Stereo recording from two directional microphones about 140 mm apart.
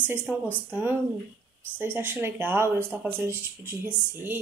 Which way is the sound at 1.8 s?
15° right (ahead or behind).